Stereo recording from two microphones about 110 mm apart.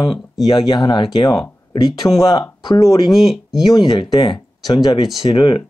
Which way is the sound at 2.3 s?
40° left (ahead or behind).